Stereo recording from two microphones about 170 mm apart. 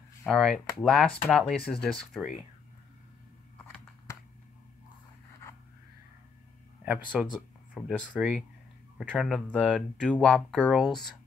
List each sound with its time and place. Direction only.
0.3 s speech: centre (ahead or behind)
3.6 s a sound: 15° left (ahead or behind)
6.8 s speech: 10° right (ahead or behind)